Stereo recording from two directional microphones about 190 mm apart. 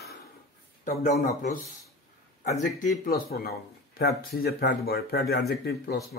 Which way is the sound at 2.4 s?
40° left (ahead or behind).